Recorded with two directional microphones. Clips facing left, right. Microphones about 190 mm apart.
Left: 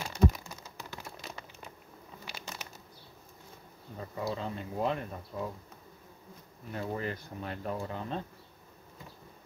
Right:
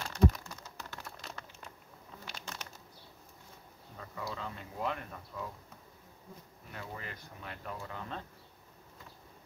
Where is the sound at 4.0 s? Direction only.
25° left (ahead or behind).